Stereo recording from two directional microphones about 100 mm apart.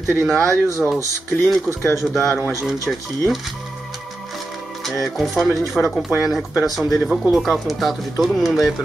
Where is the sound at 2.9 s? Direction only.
Centre (ahead or behind).